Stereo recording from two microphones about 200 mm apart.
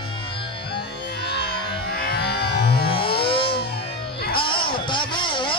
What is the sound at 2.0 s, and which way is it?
Music, 50° left (ahead or behind).